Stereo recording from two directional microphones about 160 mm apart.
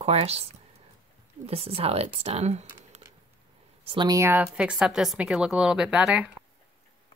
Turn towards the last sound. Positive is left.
turn(degrees=-5)  # may be behind; listen again after turning